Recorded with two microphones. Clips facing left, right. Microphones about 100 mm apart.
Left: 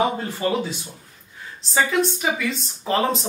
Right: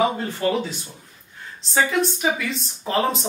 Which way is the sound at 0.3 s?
5° left (ahead or behind).